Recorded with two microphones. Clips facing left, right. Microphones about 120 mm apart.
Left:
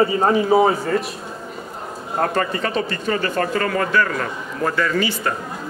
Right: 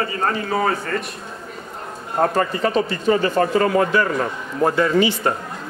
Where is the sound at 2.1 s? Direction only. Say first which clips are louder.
Right 2 dB; 5° right (ahead or behind); by 5.1 s 25° right (ahead or behind).